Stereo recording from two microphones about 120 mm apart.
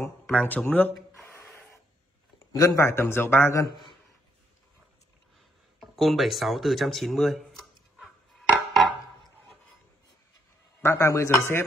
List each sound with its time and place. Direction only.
0.0 s speech: 15° left (ahead or behind)
1.2 s a sound: 20° left (ahead or behind)
2.5 s a man's voice: 25° left (ahead or behind)
3.6 s a man's voice: 40° left (ahead or behind)
5.8 s a sound: centre (ahead or behind)
10.8 s a man's voice: 20° left (ahead or behind)